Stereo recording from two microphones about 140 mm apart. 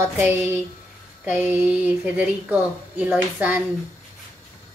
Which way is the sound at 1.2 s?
10° right (ahead or behind).